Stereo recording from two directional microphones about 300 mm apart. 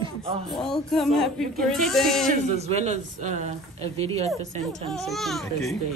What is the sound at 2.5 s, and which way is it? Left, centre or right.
Speech, right.